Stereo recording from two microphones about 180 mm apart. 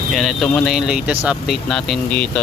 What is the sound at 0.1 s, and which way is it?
Speech, centre (ahead or behind).